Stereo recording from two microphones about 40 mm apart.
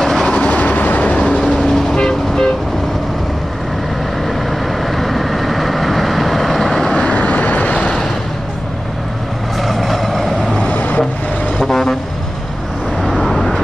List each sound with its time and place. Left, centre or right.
0.0 s train: centre
0.4 s vehicle: left
1.4 s vehicle: centre
4.9 s vehicle: centre
7.2 s vehicle: left
9.6 s vehicle: centre
10.6 s vehicle: left
11.6 s vehicle: centre
13.0 s vehicle: centre